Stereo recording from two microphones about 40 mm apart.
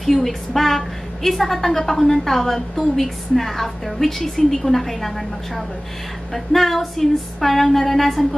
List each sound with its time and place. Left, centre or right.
0.0 s a woman's voice: centre